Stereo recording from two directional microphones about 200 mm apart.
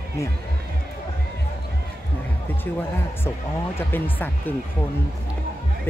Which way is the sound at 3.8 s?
10° left (ahead or behind).